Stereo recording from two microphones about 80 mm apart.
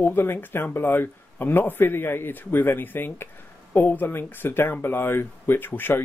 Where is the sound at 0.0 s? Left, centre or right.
Left.